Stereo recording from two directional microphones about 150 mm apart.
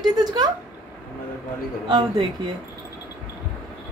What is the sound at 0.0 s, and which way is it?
Speech, 30° right (ahead or behind).